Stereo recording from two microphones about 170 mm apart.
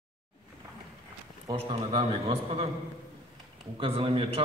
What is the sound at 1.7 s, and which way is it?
A man's voice, 30° right (ahead or behind).